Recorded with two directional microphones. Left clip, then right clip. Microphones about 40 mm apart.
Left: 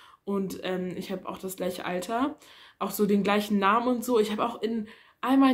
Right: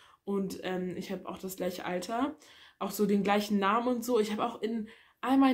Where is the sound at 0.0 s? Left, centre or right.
Left.